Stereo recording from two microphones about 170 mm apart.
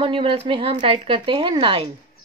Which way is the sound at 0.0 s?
30° right (ahead or behind).